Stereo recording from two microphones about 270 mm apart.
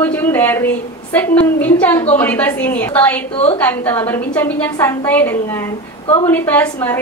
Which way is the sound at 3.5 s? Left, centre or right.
Centre.